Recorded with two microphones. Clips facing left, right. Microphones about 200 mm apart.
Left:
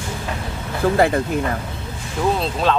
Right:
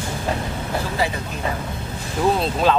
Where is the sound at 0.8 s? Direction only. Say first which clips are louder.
Left 11 dB; 55° left (ahead or behind).